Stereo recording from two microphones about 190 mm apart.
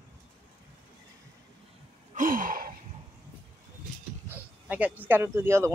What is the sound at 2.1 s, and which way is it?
Gasp, 45° right (ahead or behind).